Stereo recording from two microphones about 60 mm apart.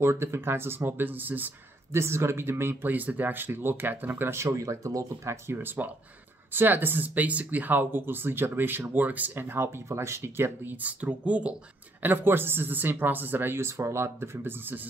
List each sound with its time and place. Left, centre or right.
0.0 s speech: right
1.9 s speech: right
4.5 s speech: right
5.6 s speech: right
12.0 s speech: right